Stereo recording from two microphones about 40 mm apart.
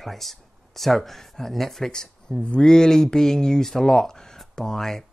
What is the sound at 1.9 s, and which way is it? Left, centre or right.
Speech, centre.